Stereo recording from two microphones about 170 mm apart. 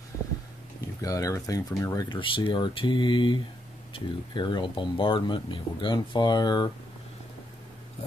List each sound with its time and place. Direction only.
1.0 s speech: 20° left (ahead or behind)